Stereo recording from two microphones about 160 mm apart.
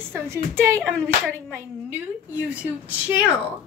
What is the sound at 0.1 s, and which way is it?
Speech, 15° right (ahead or behind).